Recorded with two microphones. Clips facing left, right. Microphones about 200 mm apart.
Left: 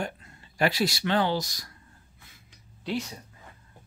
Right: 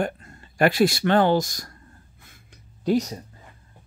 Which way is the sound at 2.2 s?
50° right (ahead or behind).